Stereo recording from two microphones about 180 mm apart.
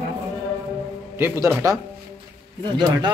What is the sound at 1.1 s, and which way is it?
Speech, 15° right (ahead or behind).